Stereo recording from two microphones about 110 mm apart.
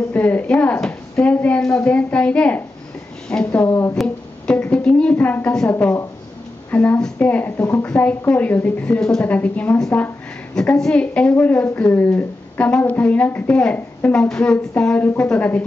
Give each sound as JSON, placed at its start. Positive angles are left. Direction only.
{"t": 0.1, "sound": "a woman's voice", "side_deg": 15}
{"t": 3.6, "sound": "speech", "side_deg": 25}
{"t": 3.9, "sound": "a woman's voice", "side_deg": 10}